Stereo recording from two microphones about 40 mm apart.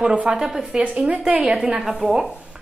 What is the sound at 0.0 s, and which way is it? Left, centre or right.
Speech, right.